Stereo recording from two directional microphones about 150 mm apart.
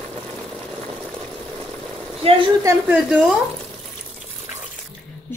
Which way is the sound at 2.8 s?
10° right (ahead or behind).